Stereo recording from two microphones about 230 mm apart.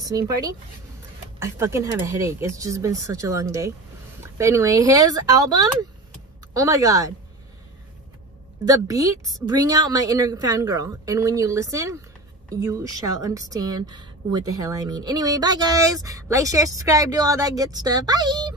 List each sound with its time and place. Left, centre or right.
1.4 s a woman's voice: centre
8.6 s a woman's voice: centre